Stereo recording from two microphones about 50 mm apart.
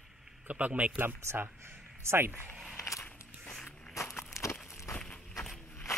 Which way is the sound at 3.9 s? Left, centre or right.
Left.